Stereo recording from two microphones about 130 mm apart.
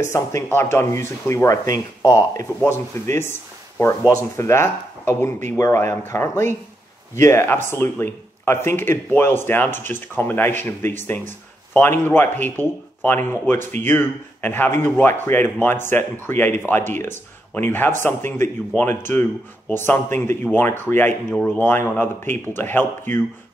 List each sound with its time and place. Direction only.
0.0 s a man's voice: 20° left (ahead or behind)